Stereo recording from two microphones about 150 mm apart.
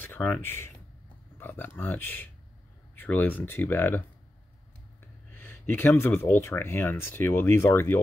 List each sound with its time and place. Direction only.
0.0 s speech: 10° left (ahead or behind)
5.3 s speech: 10° left (ahead or behind)